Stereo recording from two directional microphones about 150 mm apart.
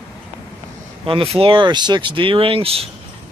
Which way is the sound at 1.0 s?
35° right (ahead or behind).